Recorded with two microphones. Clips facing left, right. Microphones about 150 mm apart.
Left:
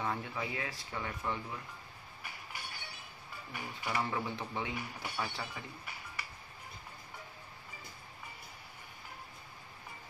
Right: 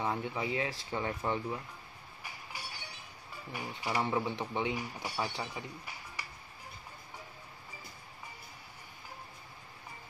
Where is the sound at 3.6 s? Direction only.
15° right (ahead or behind).